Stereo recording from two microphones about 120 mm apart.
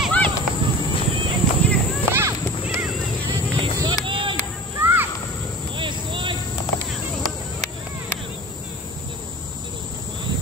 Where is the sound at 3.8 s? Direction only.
40° right (ahead or behind).